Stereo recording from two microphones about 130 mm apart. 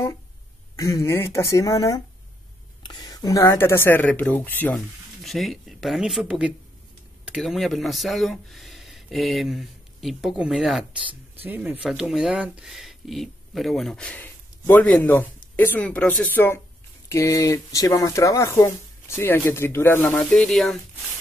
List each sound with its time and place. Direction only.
0.7 s speech: 25° left (ahead or behind)
5.2 s speech: centre (ahead or behind)
11.4 s speech: 15° right (ahead or behind); by 20.3 s 15° left (ahead or behind)
20.3 s speech: 5° left (ahead or behind)